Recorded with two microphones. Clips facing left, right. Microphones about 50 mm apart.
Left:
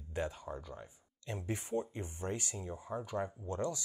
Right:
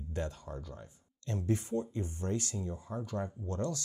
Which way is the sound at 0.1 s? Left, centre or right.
Centre.